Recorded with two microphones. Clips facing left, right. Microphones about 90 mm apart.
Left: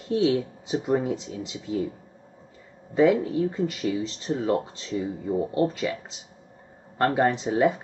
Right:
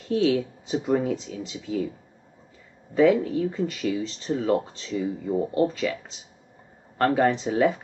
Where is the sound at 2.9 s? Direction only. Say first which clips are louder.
Right 1 dB; 20° left (ahead or behind).